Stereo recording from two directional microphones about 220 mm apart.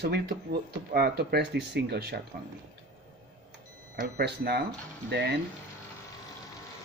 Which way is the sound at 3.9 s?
45° right (ahead or behind).